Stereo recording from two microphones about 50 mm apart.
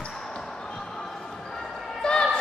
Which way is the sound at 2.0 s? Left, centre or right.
Centre.